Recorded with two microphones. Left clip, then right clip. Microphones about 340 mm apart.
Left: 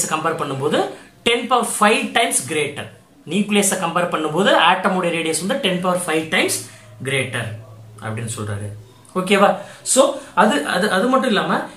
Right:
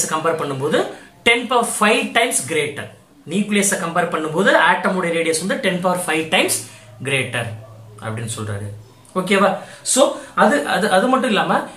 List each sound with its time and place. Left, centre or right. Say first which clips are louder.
0.0 s speech: right 1 dB; centre